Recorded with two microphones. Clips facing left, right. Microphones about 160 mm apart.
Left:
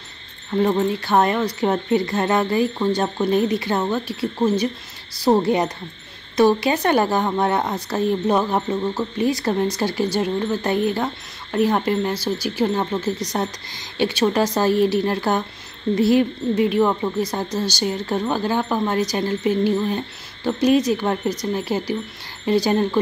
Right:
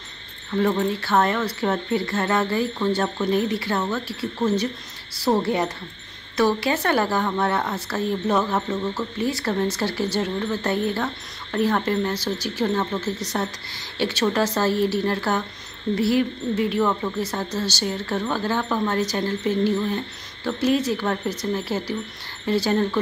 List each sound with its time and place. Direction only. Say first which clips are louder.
0.6 s speech: left 3 dB; 20° left (ahead or behind)